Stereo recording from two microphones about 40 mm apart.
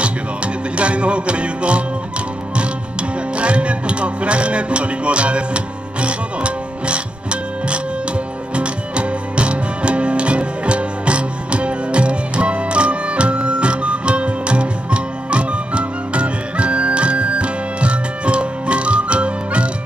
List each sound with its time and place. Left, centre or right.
0.7 s music: right